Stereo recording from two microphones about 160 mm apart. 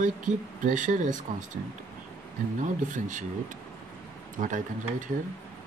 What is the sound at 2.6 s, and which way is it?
Speech, 50° right (ahead or behind).